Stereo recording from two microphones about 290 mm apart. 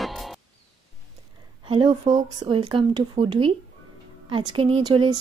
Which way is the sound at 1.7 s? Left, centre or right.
Centre.